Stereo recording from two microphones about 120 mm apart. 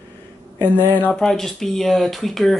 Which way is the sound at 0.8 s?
15° left (ahead or behind).